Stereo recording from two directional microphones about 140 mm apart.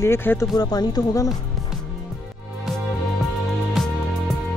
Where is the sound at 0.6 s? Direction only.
30° left (ahead or behind).